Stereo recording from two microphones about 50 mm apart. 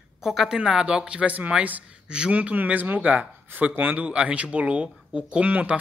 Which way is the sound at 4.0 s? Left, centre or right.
Right.